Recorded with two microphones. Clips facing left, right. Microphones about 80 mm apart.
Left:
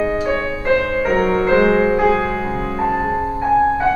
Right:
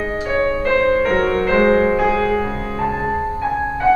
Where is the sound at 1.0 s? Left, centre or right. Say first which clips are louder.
Left 1 dB; centre.